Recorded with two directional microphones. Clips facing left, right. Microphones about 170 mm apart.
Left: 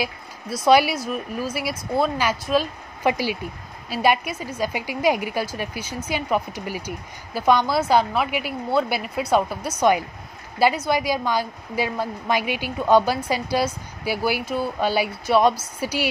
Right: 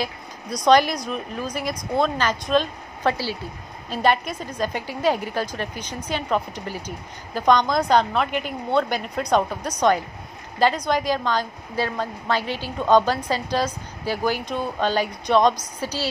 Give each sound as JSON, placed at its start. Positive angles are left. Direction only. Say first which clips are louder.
{"t": 0.0, "sound": "a woman's voice", "louder": "left 1 dB", "side_deg": 5}